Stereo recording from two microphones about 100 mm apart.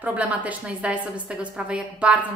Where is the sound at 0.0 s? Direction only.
15° right (ahead or behind).